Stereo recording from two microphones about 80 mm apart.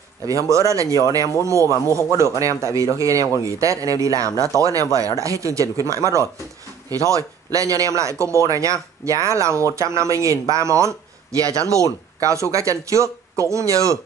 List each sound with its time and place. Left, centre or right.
0.3 s speech: right